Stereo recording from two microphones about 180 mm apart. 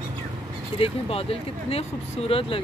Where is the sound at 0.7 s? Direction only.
30° left (ahead or behind).